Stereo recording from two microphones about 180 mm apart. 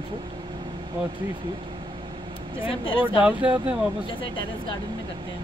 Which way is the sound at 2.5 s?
30° left (ahead or behind).